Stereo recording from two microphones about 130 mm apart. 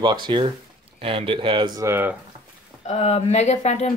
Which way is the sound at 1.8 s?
20° right (ahead or behind).